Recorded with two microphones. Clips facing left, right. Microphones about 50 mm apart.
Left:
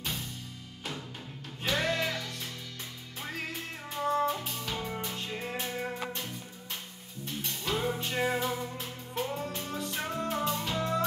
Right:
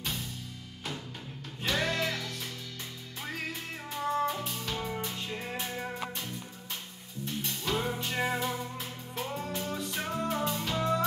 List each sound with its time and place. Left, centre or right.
1.6 s music: centre
3.9 s music: centre
7.4 s music: centre